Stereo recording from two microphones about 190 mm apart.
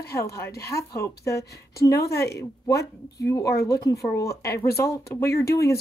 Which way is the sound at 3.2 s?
15° left (ahead or behind).